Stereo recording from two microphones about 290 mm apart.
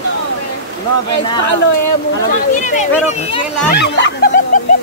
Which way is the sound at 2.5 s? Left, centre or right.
Left.